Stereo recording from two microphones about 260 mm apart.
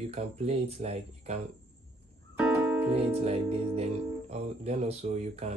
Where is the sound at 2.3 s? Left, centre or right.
Centre.